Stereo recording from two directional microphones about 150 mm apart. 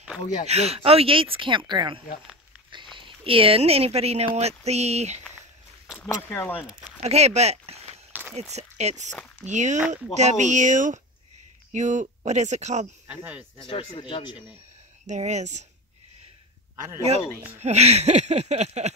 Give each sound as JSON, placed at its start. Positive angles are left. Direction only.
{"t": 0.5, "sound": "speech", "side_deg": -45}
{"t": 6.0, "sound": "speech", "side_deg": 15}
{"t": 6.6, "sound": "speech", "side_deg": -5}
{"t": 7.0, "sound": "speech", "side_deg": -45}
{"t": 8.1, "sound": "a sound", "side_deg": -10}
{"t": 8.4, "sound": "speech", "side_deg": -50}
{"t": 9.1, "sound": "speech", "side_deg": 5}
{"t": 9.5, "sound": "speech", "side_deg": -55}
{"t": 13.0, "sound": "speech", "side_deg": -10}
{"t": 13.7, "sound": "speech", "side_deg": 35}
{"t": 15.0, "sound": "speech", "side_deg": -50}
{"t": 16.7, "sound": "speech", "side_deg": -20}
{"t": 17.6, "sound": "speech", "side_deg": -45}